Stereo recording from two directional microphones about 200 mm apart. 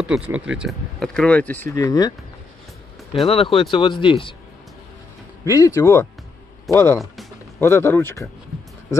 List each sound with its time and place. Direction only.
0.0 s speech: 5° right (ahead or behind); by 2.1 s 20° left (ahead or behind)
3.3 s speech: 25° left (ahead or behind)
5.4 s speech: 15° left (ahead or behind)
7.0 s music: centre (ahead or behind)
7.6 s speech: 10° left (ahead or behind)